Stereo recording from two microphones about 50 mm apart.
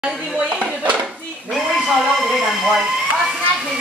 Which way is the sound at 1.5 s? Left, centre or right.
Centre.